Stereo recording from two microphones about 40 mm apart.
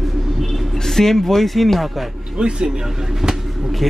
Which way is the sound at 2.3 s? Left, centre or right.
Right.